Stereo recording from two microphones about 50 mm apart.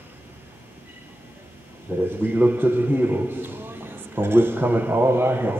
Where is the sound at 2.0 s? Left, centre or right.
Right.